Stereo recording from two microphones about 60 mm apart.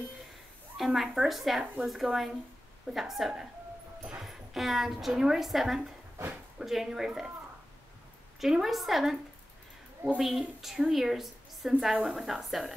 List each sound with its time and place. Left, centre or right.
0.7 s a woman's voice: centre
8.4 s a woman's voice: centre
10.1 s a woman's voice: centre